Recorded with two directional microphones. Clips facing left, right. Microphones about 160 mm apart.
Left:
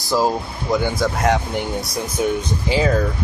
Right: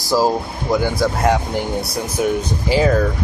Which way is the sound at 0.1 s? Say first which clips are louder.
Right 2 dB; 10° right (ahead or behind).